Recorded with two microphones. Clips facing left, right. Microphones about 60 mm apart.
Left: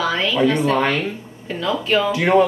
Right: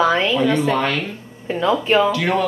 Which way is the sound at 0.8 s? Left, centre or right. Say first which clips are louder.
Left 1 dB; left.